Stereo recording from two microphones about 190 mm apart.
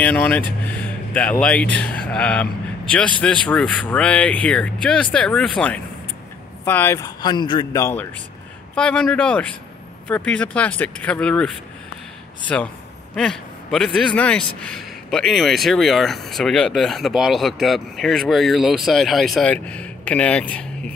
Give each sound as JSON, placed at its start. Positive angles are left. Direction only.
{"t": 0.0, "sound": "a man's voice", "side_deg": 10}
{"t": 7.2, "sound": "a man's voice", "side_deg": 25}